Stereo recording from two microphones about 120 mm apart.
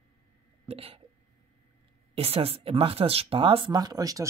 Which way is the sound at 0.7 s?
55° right (ahead or behind).